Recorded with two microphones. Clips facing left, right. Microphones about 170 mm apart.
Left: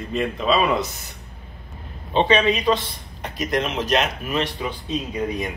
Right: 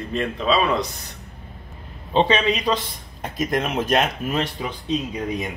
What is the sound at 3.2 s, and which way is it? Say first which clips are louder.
Speech: right 1 dB; 50° right (ahead or behind).